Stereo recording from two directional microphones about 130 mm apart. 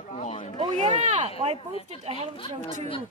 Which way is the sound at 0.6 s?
65° right (ahead or behind).